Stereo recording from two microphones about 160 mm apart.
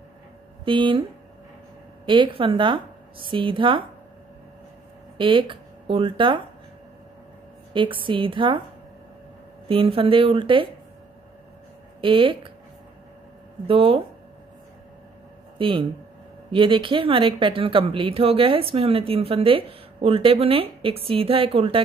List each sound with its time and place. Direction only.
0.7 s speech: 30° right (ahead or behind)
2.0 s speech: 30° right (ahead or behind)
5.1 s speech: 30° right (ahead or behind)
7.7 s speech: 30° right (ahead or behind)
9.7 s speech: 35° right (ahead or behind)
12.0 s speech: 30° right (ahead or behind)
13.7 s speech: 35° right (ahead or behind)
15.5 s a sound: 30° right (ahead or behind)
16.5 s speech: 30° right (ahead or behind)